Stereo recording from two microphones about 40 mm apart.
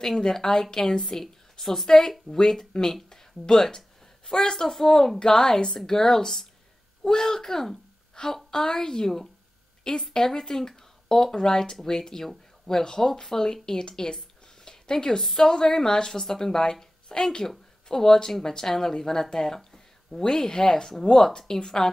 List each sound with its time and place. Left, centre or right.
0.0 s speech: centre